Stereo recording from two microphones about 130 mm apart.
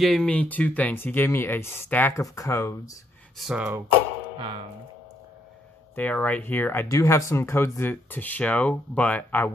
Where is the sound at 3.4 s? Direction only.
5° right (ahead or behind).